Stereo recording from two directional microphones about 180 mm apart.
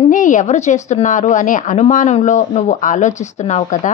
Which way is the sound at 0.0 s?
45° left (ahead or behind).